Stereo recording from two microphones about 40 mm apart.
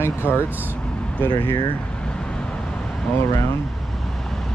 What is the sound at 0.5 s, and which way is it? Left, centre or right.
Speech, right.